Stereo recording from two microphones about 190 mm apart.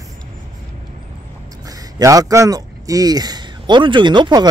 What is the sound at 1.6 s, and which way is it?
Speech, 20° right (ahead or behind).